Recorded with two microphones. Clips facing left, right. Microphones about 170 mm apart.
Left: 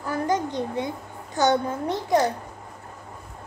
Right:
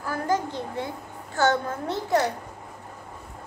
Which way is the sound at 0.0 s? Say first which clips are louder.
Left 1 dB; 20° left (ahead or behind).